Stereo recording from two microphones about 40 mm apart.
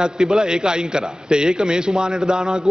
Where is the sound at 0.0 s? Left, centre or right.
Centre.